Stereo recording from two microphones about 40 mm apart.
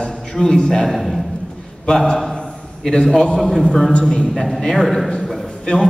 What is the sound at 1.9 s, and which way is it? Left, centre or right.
Speech, centre.